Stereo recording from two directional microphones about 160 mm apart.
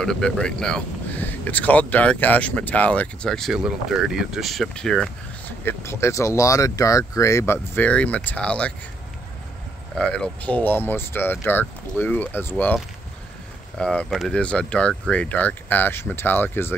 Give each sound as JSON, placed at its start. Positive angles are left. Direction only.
{"t": 0.0, "sound": "speech", "side_deg": 5}
{"t": 5.6, "sound": "speech", "side_deg": 15}
{"t": 9.9, "sound": "speech", "side_deg": 5}
{"t": 13.7, "sound": "speech", "side_deg": 5}